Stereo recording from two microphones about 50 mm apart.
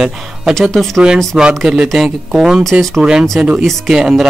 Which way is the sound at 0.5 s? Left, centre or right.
Centre.